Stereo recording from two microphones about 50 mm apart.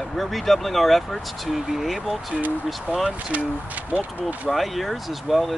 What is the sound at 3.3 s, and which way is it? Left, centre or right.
Speech, right.